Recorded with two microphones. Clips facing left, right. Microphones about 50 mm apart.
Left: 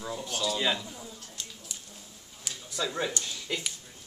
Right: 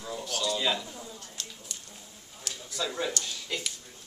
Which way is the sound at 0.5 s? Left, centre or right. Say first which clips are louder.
Even; centre.